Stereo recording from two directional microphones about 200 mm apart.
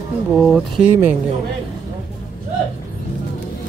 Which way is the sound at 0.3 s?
Centre (ahead or behind).